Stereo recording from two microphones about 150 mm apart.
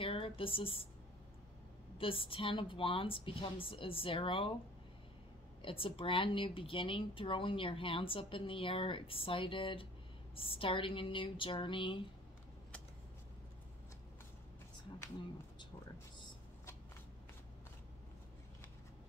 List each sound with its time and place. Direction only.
0.0 s a sound: 35° left (ahead or behind)
2.0 s speech: 35° left (ahead or behind)
5.6 s speech: 35° left (ahead or behind)